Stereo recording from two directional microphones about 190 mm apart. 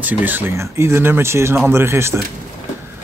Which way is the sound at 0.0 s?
10° right (ahead or behind).